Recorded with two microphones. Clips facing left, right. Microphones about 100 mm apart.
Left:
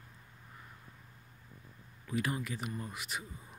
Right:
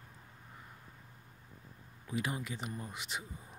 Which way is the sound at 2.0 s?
20° right (ahead or behind).